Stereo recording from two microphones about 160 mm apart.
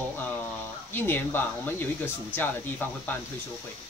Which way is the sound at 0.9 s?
15° left (ahead or behind).